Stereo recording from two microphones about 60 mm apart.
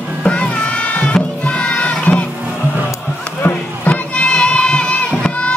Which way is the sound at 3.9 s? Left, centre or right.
Centre.